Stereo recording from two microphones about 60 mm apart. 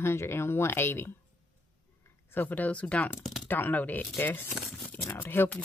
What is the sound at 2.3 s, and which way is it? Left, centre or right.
Speech, left.